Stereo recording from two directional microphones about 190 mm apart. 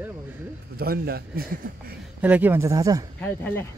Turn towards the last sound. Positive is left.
turn(degrees=10)  # may be behind; listen again after turning